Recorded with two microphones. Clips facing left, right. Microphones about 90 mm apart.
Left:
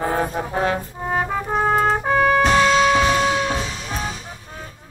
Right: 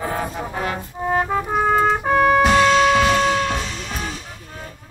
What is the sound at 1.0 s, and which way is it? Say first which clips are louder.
Trumpet: right 3 dB; centre (ahead or behind).